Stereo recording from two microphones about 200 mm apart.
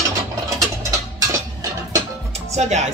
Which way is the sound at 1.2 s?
15° right (ahead or behind).